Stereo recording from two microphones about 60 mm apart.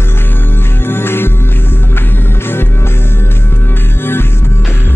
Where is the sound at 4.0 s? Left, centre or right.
Left.